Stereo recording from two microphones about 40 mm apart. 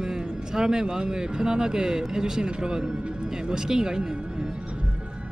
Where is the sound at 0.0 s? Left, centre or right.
Centre.